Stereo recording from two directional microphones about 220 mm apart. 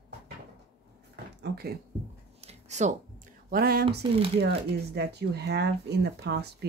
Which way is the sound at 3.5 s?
45° right (ahead or behind).